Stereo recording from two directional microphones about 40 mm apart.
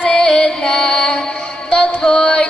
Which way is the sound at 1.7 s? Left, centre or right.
Left.